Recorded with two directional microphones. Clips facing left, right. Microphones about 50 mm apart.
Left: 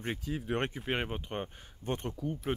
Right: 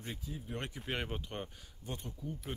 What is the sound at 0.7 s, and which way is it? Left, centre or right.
Speech, left.